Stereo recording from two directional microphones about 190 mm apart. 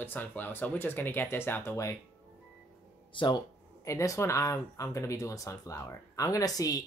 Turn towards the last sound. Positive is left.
turn(degrees=20)  # may be behind; listen again after turning